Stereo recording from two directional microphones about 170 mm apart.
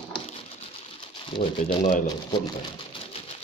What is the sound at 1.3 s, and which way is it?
Speech, 30° left (ahead or behind).